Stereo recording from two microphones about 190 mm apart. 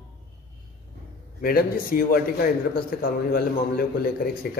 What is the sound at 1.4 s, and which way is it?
A man's voice, 50° left (ahead or behind).